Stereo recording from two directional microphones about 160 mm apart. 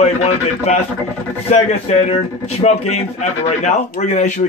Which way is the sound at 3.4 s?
50° left (ahead or behind).